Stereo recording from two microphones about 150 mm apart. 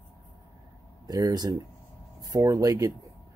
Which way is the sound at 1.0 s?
25° right (ahead or behind).